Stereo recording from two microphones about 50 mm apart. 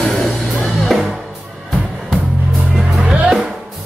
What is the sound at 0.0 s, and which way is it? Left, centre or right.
Music, centre.